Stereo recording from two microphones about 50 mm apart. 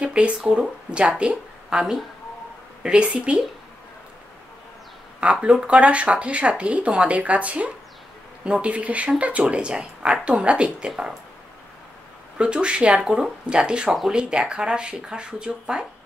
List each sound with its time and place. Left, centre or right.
0.0 s speech: right
5.2 s speech: right
12.4 s speech: right